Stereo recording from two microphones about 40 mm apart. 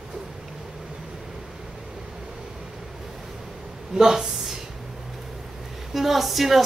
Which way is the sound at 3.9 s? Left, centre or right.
Centre.